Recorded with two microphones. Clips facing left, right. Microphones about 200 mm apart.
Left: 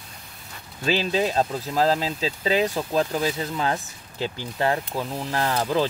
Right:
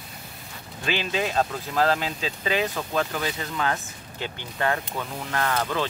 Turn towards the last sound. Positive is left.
turn(degrees=30)  # may be behind; listen again after turning